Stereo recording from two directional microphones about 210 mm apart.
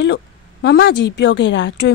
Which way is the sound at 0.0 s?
55° left (ahead or behind).